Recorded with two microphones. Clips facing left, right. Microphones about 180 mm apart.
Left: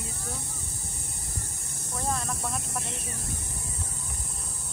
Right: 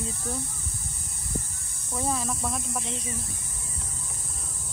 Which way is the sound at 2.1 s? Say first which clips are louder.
Right 1 dB; centre (ahead or behind).